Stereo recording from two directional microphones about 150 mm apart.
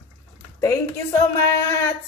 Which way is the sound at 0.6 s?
20° left (ahead or behind).